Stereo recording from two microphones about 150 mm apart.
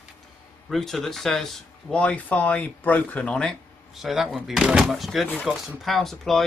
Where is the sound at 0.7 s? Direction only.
Centre (ahead or behind).